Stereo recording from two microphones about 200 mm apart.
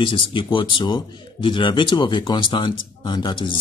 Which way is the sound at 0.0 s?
25° left (ahead or behind).